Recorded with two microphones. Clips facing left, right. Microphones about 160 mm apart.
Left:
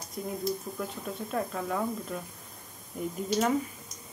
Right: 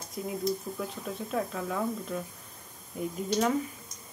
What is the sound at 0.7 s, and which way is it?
Speech, centre (ahead or behind).